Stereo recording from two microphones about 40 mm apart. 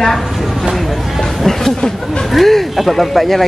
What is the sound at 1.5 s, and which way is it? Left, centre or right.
Speech, centre.